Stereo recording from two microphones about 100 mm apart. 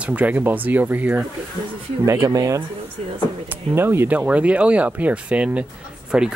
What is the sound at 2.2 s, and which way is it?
Speech, 35° right (ahead or behind).